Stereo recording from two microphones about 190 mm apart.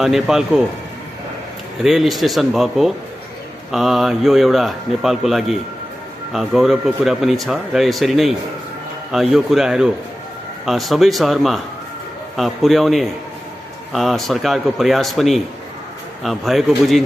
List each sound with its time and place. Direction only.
0.0 s speech: 5° right (ahead or behind)
1.8 s speech: centre (ahead or behind)